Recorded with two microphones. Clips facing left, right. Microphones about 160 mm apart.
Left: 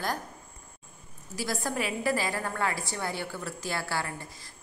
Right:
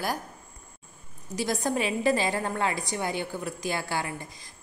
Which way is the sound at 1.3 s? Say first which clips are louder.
Right 4 dB; 20° right (ahead or behind).